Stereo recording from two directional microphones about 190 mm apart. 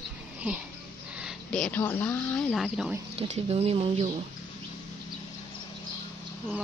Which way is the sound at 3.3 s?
35° right (ahead or behind).